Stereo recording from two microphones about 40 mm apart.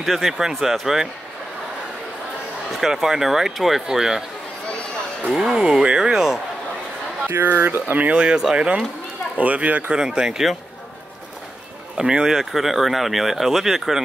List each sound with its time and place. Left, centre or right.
0.0 s speech: centre
2.7 s speech: centre
3.8 s speech: centre
5.3 s speech: centre
7.2 s speech: right
7.8 s speech: right
8.1 s speech: right
9.4 s speech: right
9.9 s speech: centre
12.0 s speech: centre
12.4 s speech: centre